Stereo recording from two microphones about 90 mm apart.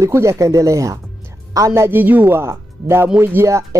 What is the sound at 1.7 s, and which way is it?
Speech, 25° right (ahead or behind).